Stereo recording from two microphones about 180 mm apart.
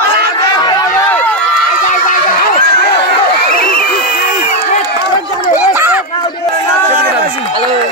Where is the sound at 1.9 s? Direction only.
45° left (ahead or behind).